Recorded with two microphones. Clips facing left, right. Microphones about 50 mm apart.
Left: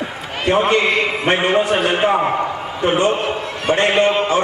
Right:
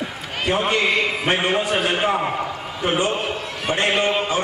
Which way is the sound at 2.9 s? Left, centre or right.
Centre.